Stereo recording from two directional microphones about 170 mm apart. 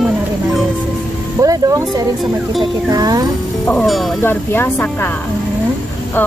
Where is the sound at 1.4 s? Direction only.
20° right (ahead or behind).